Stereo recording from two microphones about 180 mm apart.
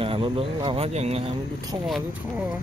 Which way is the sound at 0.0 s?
30° right (ahead or behind).